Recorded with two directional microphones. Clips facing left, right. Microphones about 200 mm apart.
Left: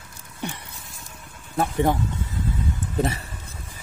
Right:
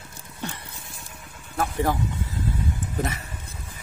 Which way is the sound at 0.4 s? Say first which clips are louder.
Left 2 dB; 15° left (ahead or behind).